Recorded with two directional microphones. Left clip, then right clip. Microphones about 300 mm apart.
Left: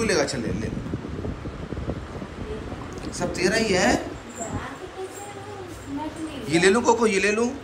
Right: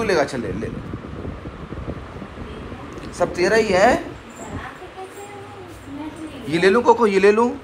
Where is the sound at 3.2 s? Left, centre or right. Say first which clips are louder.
Right 6 dB; centre.